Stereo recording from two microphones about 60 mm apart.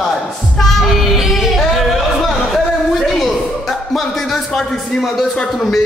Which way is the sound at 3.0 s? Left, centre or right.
Centre.